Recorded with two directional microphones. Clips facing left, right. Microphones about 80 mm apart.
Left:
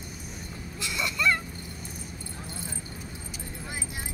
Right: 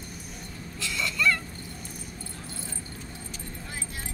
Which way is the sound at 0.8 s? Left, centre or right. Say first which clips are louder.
Right 1 dB; left.